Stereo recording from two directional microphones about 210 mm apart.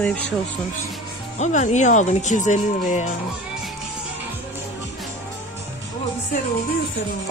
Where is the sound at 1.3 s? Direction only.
35° left (ahead or behind).